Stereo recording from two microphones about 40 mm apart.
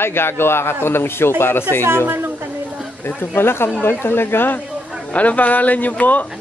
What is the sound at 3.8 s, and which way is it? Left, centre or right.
Speech, left.